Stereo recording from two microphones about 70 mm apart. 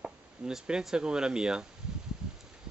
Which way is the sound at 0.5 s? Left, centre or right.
Centre.